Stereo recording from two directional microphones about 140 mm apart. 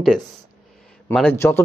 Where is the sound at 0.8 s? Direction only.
5° left (ahead or behind).